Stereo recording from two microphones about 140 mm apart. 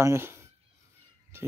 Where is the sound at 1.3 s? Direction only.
20° right (ahead or behind).